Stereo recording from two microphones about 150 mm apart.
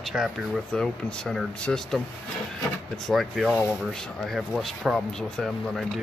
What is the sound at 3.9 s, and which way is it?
Speech, centre (ahead or behind).